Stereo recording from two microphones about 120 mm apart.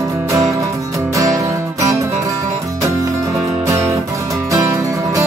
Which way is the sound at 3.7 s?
25° right (ahead or behind).